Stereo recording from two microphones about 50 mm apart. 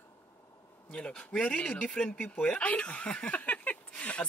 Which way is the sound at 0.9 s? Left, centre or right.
Left.